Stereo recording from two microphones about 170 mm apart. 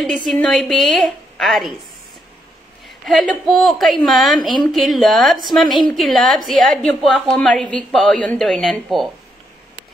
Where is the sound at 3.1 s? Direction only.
Centre (ahead or behind).